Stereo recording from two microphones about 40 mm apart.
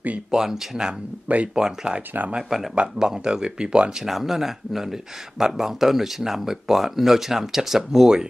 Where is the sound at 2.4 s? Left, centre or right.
Centre.